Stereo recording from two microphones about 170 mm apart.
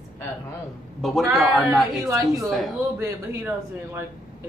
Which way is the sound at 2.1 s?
20° right (ahead or behind).